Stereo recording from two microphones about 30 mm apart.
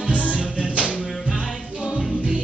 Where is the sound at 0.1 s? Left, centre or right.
Left.